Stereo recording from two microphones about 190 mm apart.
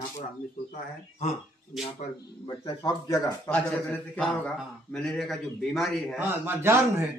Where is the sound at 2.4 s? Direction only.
25° left (ahead or behind).